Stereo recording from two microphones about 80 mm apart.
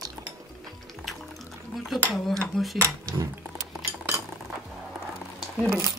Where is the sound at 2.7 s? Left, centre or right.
Right.